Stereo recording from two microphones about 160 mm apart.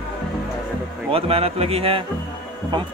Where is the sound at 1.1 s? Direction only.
35° right (ahead or behind).